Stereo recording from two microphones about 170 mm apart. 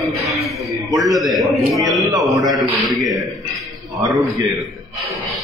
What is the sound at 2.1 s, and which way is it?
Speech, 20° right (ahead or behind).